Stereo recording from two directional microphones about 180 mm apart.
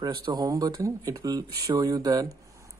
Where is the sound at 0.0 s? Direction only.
20° right (ahead or behind).